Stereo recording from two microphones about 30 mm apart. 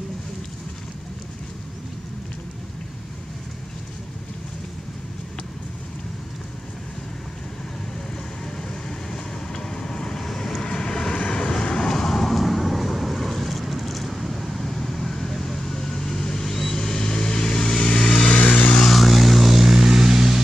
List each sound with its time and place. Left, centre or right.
9.1 s vehicle: centre
10.2 s vehicle: centre
12.2 s vehicle: centre; by 18.3 s left
18.3 s vehicle: left
18.8 s vehicle: centre